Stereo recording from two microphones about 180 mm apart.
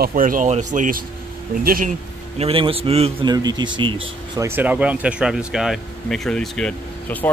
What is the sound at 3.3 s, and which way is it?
Speech, 20° right (ahead or behind).